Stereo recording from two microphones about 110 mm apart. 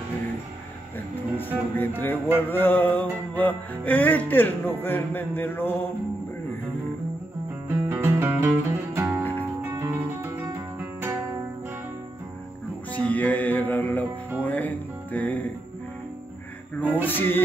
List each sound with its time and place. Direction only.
1.8 s speech: 20° left (ahead or behind)
7.6 s music: 20° right (ahead or behind)
12.9 s music: 15° left (ahead or behind)
16.9 s speech: 15° left (ahead or behind)